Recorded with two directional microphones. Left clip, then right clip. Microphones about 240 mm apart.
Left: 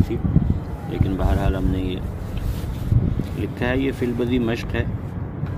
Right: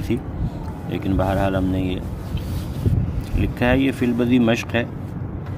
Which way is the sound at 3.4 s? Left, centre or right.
Right.